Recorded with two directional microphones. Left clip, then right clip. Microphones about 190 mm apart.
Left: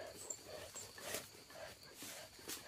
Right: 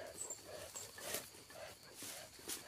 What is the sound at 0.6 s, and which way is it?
Wild animals, 10° right (ahead or behind).